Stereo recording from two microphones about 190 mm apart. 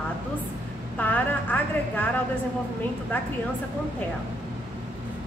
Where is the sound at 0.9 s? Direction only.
10° left (ahead or behind).